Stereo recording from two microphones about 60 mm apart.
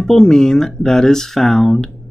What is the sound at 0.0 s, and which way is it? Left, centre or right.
Speech, centre.